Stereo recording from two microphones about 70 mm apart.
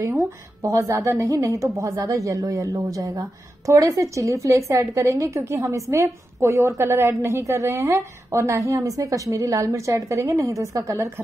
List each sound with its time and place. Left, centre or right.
0.6 s a woman's voice: right